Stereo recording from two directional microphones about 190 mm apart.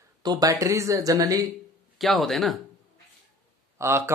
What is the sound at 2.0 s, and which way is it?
Speech, centre (ahead or behind).